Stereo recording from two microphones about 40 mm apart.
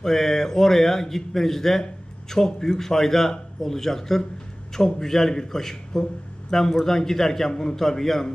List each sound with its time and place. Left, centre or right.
0.0 s a man's voice: centre